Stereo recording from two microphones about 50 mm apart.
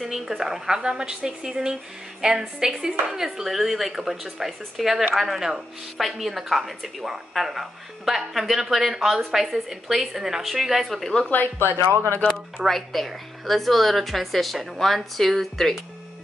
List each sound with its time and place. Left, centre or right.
0.0 s a woman's voice: centre
10.9 s a woman's voice: centre
11.7 s speech: right
12.0 s speech: left
12.6 s a woman's voice: centre